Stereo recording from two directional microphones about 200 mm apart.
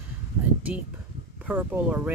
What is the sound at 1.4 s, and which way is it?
Speech, 10° right (ahead or behind).